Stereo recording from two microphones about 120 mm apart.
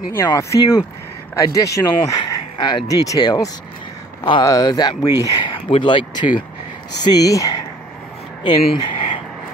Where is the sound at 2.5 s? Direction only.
40° left (ahead or behind).